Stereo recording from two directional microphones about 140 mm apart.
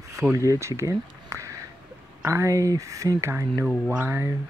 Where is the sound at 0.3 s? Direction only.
20° right (ahead or behind).